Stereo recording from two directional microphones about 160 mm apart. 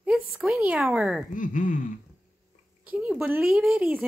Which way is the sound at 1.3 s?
55° left (ahead or behind).